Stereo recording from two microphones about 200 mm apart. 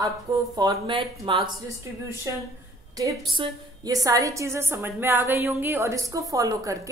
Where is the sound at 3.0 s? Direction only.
20° right (ahead or behind).